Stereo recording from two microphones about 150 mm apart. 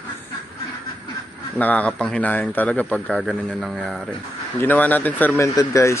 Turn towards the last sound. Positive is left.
turn(degrees=20)  # may be behind; listen again after turning